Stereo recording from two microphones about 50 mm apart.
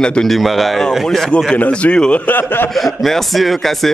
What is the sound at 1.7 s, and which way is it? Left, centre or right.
Speech, left.